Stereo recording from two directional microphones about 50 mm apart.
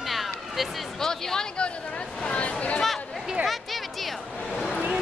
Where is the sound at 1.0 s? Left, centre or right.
Centre.